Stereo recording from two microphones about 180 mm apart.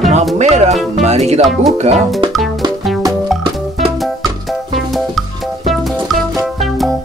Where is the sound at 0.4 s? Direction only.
40° right (ahead or behind).